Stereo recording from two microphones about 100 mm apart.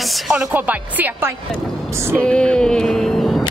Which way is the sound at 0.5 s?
20° right (ahead or behind).